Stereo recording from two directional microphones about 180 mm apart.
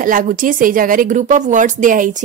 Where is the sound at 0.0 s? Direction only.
50° right (ahead or behind).